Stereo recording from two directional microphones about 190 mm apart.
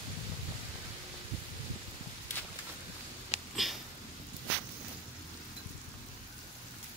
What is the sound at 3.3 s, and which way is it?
Sniff, 35° left (ahead or behind).